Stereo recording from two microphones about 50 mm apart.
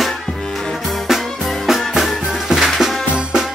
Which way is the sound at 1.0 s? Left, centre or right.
Centre.